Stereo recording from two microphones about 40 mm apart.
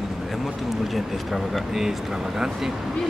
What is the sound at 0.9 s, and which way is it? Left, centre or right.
Speech, centre.